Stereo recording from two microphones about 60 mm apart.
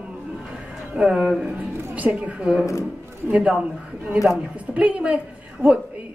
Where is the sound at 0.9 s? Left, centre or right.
Centre.